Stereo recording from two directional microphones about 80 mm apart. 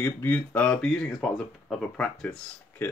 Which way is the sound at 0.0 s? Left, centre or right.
Left.